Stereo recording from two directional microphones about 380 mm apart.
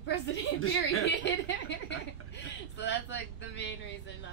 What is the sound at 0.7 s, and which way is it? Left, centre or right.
A woman's voice, left.